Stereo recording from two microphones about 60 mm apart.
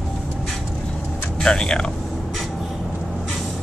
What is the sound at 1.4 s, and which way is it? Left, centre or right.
Speech, centre.